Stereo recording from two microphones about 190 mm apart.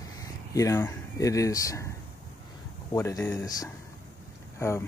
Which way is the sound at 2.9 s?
15° left (ahead or behind).